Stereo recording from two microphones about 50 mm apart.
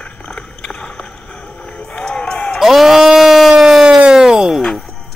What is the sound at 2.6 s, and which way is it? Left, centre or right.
Bleat, centre.